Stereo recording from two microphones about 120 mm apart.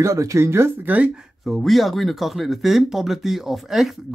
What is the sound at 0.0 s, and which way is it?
Speech, 25° right (ahead or behind).